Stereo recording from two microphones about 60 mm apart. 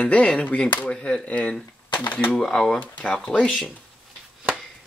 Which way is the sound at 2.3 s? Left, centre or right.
Centre.